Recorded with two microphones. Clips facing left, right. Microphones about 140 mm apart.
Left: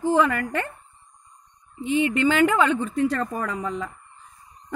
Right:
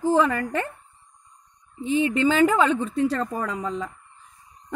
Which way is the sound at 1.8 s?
35° right (ahead or behind).